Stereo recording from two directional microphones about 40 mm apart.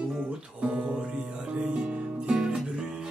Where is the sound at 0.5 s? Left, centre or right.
Right.